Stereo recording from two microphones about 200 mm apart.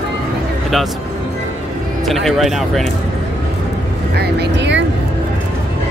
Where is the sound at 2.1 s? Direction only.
Centre (ahead or behind).